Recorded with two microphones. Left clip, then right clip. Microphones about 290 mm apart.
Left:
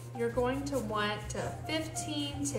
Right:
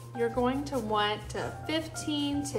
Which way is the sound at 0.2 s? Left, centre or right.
Right.